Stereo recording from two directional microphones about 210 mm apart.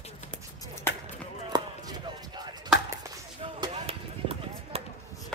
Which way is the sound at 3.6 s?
30° right (ahead or behind).